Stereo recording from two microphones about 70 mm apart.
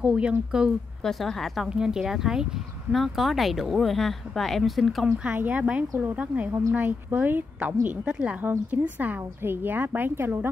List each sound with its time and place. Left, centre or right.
0.0 s speech: centre
1.0 s speech: centre
1.7 s speech: centre
5.0 s a woman's voice: right
8.5 s a woman's voice: right